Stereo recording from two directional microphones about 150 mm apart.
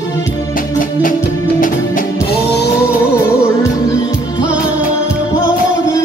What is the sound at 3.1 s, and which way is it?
Music, 20° left (ahead or behind).